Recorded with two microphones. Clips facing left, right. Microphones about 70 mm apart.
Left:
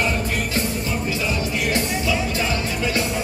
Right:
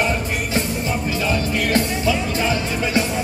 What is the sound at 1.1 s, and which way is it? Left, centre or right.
Music, right.